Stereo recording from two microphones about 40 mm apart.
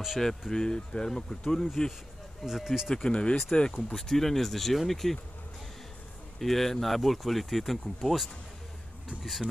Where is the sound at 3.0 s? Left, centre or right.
Left.